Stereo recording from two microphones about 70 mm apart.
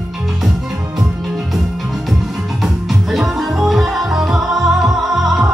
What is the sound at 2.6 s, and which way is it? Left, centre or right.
Music, centre.